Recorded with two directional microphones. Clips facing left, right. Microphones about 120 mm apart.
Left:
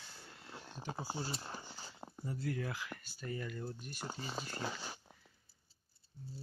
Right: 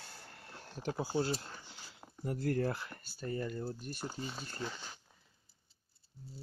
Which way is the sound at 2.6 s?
35° right (ahead or behind).